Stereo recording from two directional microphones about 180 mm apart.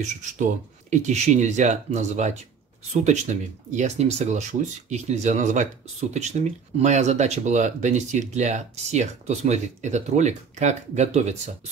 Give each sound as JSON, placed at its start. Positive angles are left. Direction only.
{"t": 0.0, "sound": "speech", "side_deg": -40}